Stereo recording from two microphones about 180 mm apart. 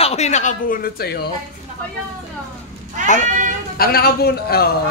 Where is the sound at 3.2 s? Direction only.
45° right (ahead or behind).